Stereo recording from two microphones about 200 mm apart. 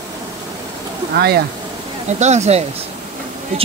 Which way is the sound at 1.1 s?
50° right (ahead or behind).